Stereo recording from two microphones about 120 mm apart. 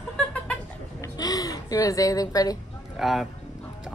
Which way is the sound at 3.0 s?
Centre (ahead or behind).